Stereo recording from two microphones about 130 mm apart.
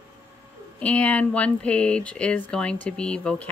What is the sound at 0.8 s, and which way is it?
A woman's voice, 10° left (ahead or behind).